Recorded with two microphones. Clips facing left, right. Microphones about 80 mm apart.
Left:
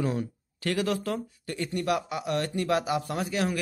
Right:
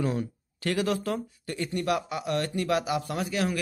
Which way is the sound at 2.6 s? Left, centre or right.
Left.